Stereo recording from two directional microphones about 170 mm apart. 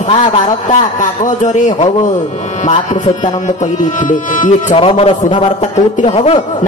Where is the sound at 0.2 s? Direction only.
45° left (ahead or behind).